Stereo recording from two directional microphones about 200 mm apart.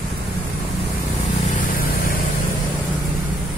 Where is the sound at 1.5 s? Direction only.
40° left (ahead or behind).